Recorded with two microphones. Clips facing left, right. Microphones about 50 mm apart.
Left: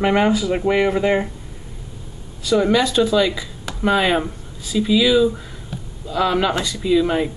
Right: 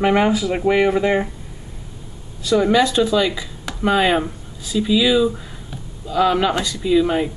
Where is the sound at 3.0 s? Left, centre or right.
Centre.